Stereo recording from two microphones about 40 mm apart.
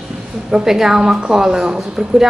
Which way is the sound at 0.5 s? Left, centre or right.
Centre.